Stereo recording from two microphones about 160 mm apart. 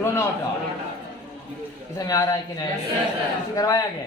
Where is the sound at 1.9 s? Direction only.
25° left (ahead or behind).